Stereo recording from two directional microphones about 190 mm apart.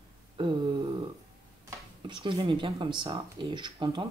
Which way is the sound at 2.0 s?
25° right (ahead or behind).